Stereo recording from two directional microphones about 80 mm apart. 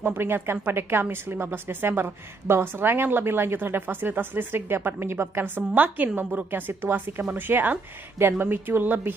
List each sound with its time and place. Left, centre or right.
0.0 s a woman's voice: right